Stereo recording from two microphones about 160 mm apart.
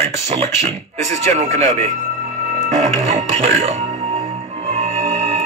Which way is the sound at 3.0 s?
45° right (ahead or behind).